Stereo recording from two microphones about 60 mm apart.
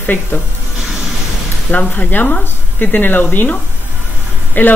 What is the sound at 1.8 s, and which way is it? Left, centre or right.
Speech, left.